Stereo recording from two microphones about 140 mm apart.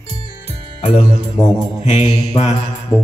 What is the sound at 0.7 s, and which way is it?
Music, 60° left (ahead or behind).